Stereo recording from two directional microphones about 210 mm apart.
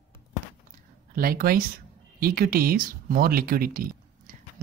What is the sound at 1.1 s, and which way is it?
Speech, 45° right (ahead or behind).